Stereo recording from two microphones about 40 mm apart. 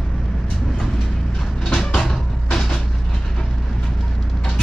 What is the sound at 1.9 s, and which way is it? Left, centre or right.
Vehicle, centre.